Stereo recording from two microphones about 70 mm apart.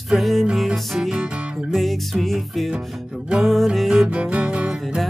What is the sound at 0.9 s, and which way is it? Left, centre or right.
Speech, centre.